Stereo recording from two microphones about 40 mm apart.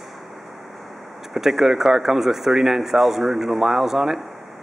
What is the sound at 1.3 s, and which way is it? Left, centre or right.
A man's voice, centre.